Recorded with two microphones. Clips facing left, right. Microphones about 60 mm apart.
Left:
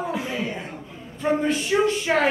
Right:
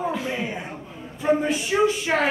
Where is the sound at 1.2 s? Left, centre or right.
Centre.